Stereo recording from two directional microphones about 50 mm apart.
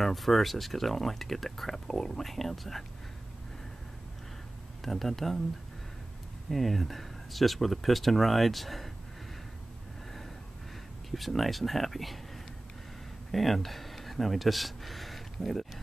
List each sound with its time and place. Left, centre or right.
0.0 s speech: centre
4.8 s speech: centre
6.5 s speech: centre
11.1 s speech: centre
13.3 s speech: centre